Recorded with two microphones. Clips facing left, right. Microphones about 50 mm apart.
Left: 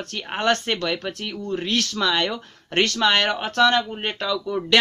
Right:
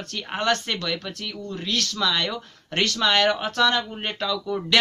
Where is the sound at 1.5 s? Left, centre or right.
Left.